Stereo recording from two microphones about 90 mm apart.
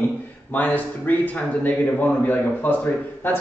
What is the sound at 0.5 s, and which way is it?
A man's voice, 20° left (ahead or behind).